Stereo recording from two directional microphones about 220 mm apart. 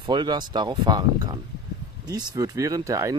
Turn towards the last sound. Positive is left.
turn(degrees=-15)  # may be behind; listen again after turning